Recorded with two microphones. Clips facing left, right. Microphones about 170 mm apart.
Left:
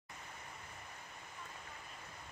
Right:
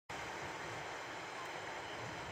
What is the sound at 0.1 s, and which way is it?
Waves, 90° right.